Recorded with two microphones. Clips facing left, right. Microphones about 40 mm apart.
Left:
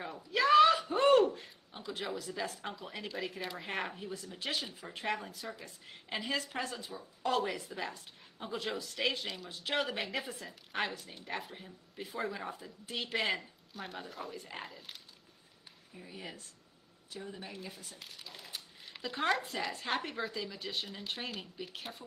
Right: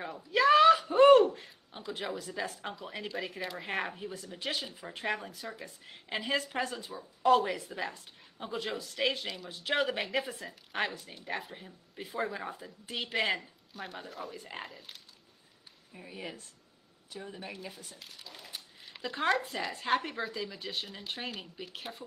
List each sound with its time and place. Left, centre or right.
0.0 s a sound: centre
2.6 s speech: centre
7.2 s a woman's voice: centre
16.1 s speech: centre
17.6 s speech: centre